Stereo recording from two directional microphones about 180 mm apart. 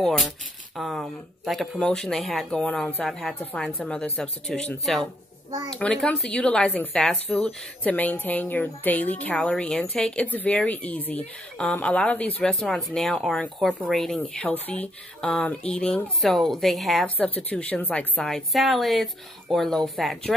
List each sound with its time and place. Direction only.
0.7 s speech: centre (ahead or behind)
5.5 s a child's voice: 20° right (ahead or behind)
5.8 s speech: 5° left (ahead or behind)